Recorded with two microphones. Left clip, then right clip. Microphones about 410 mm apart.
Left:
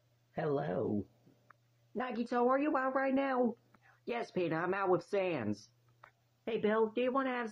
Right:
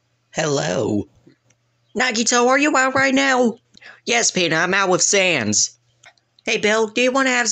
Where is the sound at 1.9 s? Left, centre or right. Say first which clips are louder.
Right 18 dB; left.